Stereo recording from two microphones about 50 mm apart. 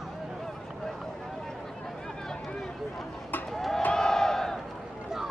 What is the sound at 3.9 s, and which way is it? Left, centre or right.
Battle cry, centre.